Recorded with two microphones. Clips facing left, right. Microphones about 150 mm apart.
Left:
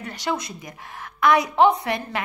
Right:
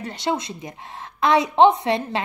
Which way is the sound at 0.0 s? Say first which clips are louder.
Right 2 dB; 25° right (ahead or behind).